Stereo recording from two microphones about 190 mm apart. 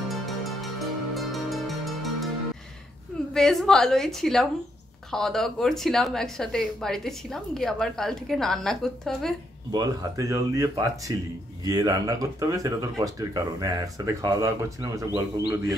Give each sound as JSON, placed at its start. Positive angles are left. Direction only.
{"t": 1.1, "sound": "music", "side_deg": 0}
{"t": 3.3, "sound": "a woman's voice", "side_deg": 5}
{"t": 9.7, "sound": "speech", "side_deg": -20}